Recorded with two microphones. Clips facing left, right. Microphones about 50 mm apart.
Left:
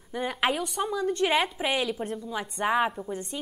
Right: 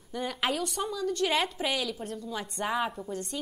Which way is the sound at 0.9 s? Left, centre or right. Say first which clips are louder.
Left 4 dB; left.